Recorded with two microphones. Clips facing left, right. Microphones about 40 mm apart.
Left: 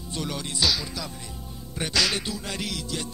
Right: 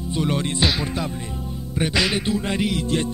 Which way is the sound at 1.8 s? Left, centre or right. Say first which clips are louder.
Right 4 dB; right.